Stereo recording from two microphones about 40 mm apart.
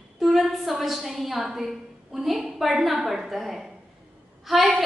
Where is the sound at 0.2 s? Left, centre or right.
Centre.